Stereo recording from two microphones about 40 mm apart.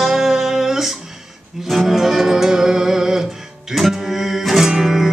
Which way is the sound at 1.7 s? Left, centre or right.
Centre.